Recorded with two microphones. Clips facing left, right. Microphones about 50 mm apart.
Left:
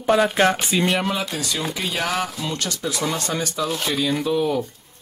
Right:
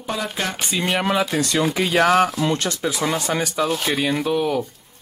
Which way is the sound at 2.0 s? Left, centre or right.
Right.